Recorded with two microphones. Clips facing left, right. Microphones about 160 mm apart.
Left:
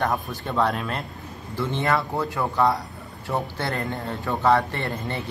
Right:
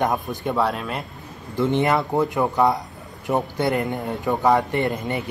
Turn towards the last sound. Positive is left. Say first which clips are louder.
# right 6 dB
turn(degrees=-15)  # may be behind; listen again after turning